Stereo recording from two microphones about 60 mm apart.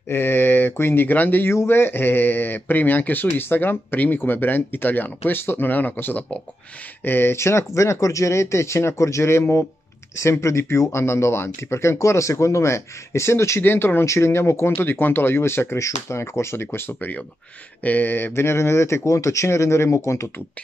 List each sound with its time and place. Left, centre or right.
0.1 s speech: left
1.5 s speech: left
13.6 s speech: left
14.0 s speech: left